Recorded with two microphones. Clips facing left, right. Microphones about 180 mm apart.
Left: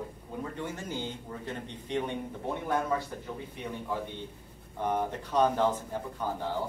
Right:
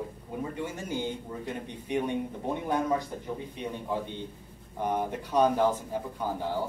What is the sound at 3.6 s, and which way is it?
Speech, 20° right (ahead or behind).